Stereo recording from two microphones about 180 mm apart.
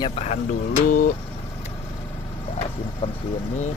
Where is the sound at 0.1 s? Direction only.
35° left (ahead or behind).